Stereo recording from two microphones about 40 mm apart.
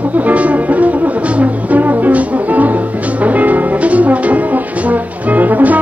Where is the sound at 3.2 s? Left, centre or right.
Right.